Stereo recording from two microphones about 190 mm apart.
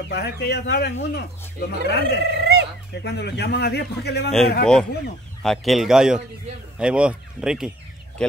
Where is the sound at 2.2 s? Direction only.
60° right (ahead or behind).